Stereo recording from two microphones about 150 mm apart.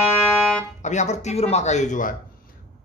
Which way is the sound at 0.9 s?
45° left (ahead or behind).